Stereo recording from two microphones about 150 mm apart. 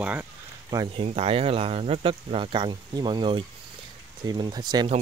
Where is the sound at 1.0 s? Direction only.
40° right (ahead or behind).